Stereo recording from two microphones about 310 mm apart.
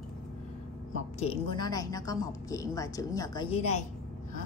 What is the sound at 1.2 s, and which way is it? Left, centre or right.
A woman's voice, centre.